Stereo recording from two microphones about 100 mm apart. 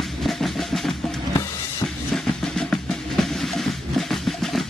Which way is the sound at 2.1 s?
5° left (ahead or behind).